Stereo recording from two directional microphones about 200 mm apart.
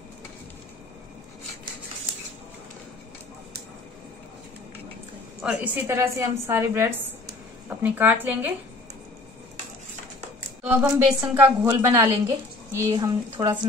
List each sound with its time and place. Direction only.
5.4 s a woman's voice: 5° right (ahead or behind)
10.6 s a woman's voice: 5° right (ahead or behind)